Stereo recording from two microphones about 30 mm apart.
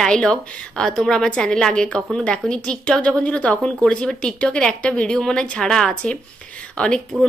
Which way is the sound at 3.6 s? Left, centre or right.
Left.